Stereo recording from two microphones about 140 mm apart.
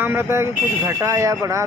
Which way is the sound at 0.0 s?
15° right (ahead or behind).